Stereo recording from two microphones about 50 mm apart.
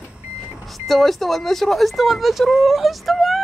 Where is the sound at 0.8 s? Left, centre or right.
Centre.